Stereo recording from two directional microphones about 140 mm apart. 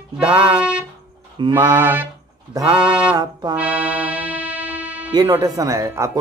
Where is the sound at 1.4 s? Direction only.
30° right (ahead or behind).